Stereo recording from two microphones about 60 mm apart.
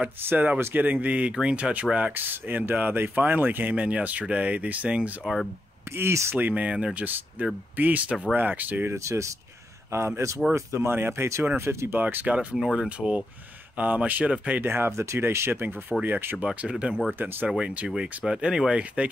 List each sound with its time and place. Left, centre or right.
0.3 s speech: right
2.1 s speech: right
5.2 s speech: centre
5.9 s speech: right
6.3 s speech: right
8.9 s speech: right
10.9 s speech: right
12.0 s speech: right
12.5 s speech: centre
13.7 s speech: right
14.6 s speech: right
14.9 s speech: right
15.9 s speech: centre
16.3 s speech: centre